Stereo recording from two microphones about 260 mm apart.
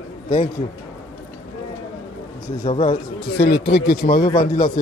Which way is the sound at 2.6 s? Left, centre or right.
Left.